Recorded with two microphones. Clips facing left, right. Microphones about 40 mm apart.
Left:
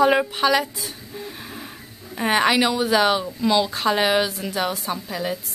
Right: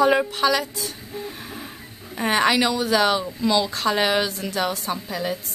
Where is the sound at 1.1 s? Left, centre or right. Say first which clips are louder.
Right 1 dB; centre.